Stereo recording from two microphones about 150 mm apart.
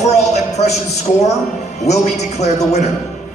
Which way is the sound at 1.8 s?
50° left (ahead or behind).